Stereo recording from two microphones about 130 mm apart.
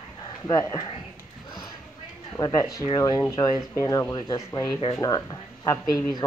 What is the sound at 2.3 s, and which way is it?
Speech, 30° left (ahead or behind).